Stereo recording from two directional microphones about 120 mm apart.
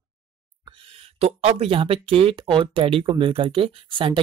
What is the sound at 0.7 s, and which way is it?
Speech, 50° right (ahead or behind).